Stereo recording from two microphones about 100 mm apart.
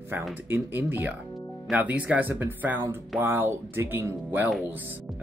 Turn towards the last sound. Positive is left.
turn(degrees=-20)  # may be behind; listen again after turning